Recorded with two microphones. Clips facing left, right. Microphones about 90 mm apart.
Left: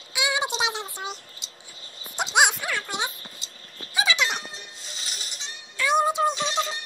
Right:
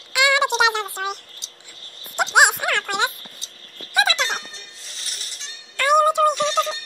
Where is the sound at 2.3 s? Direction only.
55° right (ahead or behind).